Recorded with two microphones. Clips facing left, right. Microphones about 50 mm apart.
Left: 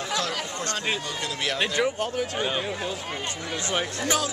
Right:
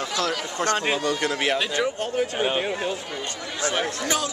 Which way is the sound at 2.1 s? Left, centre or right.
Right.